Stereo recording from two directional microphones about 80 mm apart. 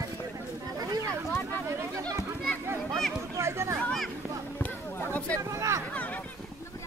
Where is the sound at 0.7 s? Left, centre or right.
Right.